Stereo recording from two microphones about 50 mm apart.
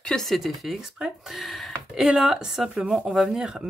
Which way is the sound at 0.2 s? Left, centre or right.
Centre.